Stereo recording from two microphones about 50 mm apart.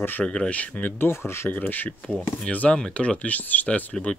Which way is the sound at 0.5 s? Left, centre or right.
Left.